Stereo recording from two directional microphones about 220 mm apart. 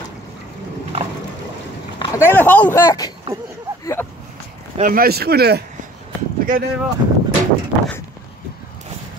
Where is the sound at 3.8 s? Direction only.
10° left (ahead or behind).